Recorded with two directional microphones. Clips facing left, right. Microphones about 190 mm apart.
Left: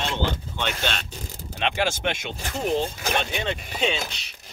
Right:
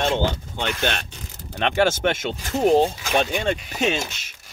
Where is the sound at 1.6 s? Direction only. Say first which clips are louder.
Right 5 dB; 45° right (ahead or behind).